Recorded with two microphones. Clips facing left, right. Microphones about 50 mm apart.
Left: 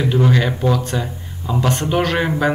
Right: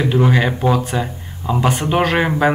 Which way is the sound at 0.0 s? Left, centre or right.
Centre.